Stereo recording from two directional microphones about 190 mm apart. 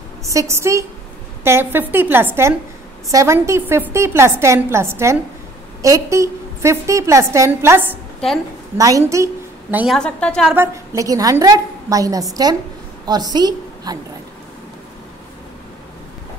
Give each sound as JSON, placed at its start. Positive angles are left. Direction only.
{"t": 0.3, "sound": "a woman's voice", "side_deg": -15}
{"t": 9.9, "sound": "a woman's voice", "side_deg": 5}
{"t": 10.5, "sound": "a woman's voice", "side_deg": -15}